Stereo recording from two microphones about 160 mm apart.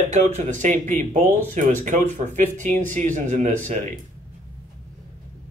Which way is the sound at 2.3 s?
50° right (ahead or behind).